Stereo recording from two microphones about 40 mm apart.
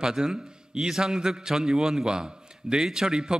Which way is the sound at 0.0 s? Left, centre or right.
Centre.